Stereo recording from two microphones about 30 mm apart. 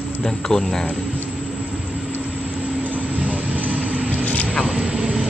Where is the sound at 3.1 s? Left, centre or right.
Right.